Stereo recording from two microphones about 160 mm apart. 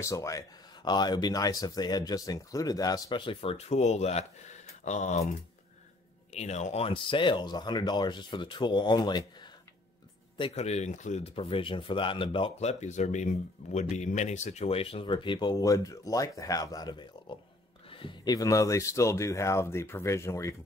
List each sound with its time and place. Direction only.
0.0 s speech: 20° left (ahead or behind); by 5.2 s 45° left (ahead or behind)
6.3 s speech: 45° left (ahead or behind); by 20.5 s 20° left (ahead or behind)